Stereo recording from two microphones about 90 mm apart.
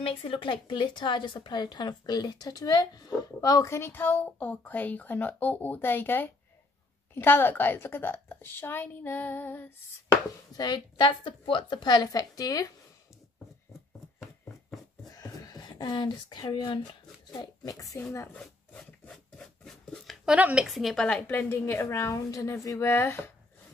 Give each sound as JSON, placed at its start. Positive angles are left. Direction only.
{"t": 0.0, "sound": "a woman's voice", "side_deg": 75}
{"t": 10.5, "sound": "a woman's voice", "side_deg": 50}
{"t": 15.0, "sound": "a sound", "side_deg": 40}
{"t": 17.3, "sound": "speech", "side_deg": 45}
{"t": 18.7, "sound": "rub", "side_deg": 15}
{"t": 19.3, "sound": "a sound", "side_deg": 5}
{"t": 20.2, "sound": "speech", "side_deg": -15}
{"t": 20.6, "sound": "a woman's voice", "side_deg": 0}
{"t": 21.3, "sound": "a woman's voice", "side_deg": 25}